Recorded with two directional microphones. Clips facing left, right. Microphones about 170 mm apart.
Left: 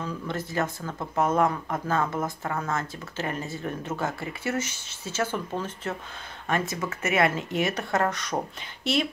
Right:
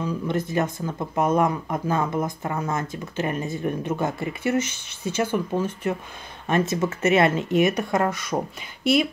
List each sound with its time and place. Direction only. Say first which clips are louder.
0.0 s speech: right 6 dB; 15° right (ahead or behind)